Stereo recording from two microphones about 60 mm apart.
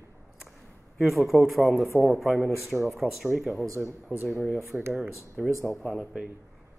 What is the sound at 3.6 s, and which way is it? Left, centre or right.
Speech, right.